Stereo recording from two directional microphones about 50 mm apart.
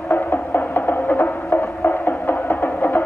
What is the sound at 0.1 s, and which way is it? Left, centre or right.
Music, left.